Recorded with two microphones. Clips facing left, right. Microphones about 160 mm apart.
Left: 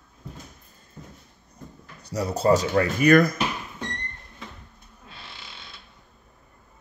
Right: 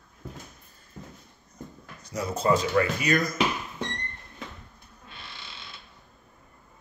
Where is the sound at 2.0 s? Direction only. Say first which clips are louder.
Left 4 dB; 35° left (ahead or behind).